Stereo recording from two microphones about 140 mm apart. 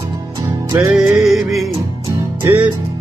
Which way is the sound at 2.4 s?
10° right (ahead or behind).